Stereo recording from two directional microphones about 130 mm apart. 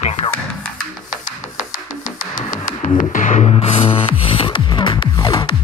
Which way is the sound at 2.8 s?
80° left.